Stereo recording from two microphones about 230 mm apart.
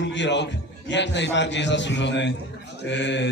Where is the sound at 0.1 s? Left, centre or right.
Left.